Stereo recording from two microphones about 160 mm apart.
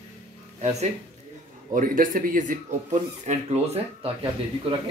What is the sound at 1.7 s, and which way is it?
Speech, 60° right (ahead or behind).